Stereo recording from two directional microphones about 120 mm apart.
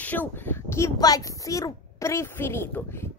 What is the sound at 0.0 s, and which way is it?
Speech, 15° left (ahead or behind).